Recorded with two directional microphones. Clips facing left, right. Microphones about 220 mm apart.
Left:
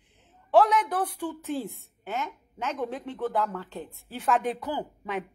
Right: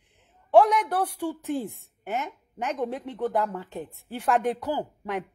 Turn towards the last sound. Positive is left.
turn(degrees=-10)  # may be behind; listen again after turning